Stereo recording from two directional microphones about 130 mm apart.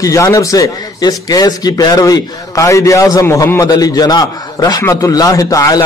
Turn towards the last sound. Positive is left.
turn(degrees=25)  # may be behind; listen again after turning